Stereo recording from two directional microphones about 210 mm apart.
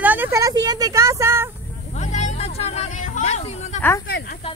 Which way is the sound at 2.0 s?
35° left (ahead or behind).